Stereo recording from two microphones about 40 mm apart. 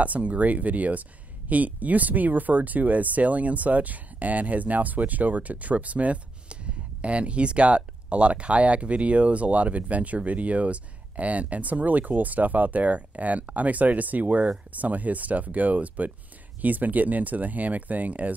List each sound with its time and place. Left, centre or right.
0.0 s speech: right